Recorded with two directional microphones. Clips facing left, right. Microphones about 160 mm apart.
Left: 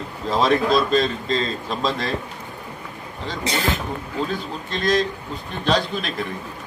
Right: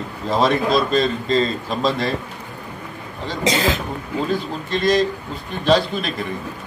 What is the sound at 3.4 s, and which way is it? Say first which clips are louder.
Speech: right 5 dB; 90° right.